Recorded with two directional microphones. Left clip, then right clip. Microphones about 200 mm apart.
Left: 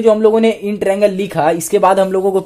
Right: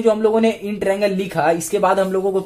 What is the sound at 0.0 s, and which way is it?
Speech, 35° left (ahead or behind).